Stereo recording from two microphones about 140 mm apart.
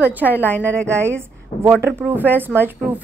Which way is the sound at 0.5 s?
10° left (ahead or behind).